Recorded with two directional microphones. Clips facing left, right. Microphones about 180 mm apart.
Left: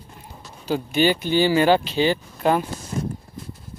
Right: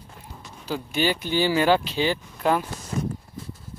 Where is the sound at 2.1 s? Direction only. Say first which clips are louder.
Left 1 dB; 25° left (ahead or behind).